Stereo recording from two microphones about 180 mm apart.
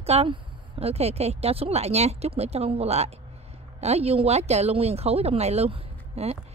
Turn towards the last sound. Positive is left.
turn(degrees=-35)  # may be behind; listen again after turning